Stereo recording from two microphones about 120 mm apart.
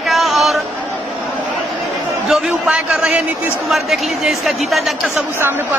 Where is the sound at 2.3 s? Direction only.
10° right (ahead or behind).